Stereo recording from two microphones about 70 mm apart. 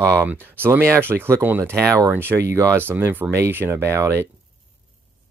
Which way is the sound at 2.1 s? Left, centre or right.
Right.